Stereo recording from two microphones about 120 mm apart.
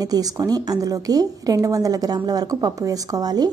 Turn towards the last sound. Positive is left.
turn(degrees=-35)  # may be behind; listen again after turning